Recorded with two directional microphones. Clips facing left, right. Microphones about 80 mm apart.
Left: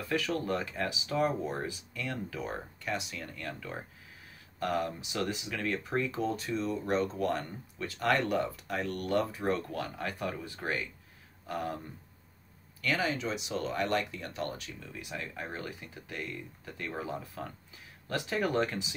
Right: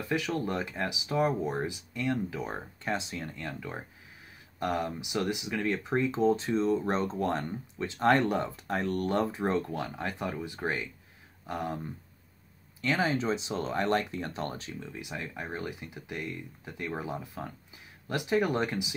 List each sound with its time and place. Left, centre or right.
0.0 s speech: centre
12.8 s speech: right; by 18.9 s centre